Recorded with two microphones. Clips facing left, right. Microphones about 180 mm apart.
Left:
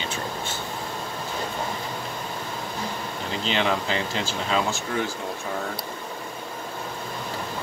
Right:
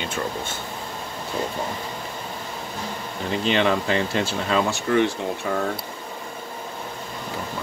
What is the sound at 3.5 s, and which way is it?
Speech, 60° right (ahead or behind).